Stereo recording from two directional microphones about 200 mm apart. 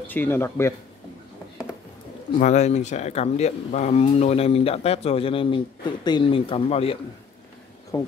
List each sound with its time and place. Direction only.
0.0 s speech: 10° left (ahead or behind)
2.3 s speech: 35° left (ahead or behind)